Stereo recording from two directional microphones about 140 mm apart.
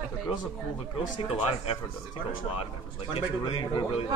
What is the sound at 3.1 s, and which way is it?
Speech, 35° left (ahead or behind).